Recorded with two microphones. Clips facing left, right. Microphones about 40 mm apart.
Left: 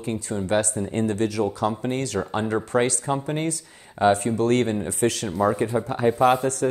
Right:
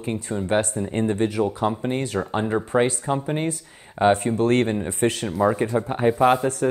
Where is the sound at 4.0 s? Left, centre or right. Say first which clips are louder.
Right 1 dB; right.